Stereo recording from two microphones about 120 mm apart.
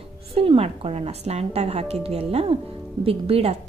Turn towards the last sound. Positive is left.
turn(degrees=-55)  # may be behind; listen again after turning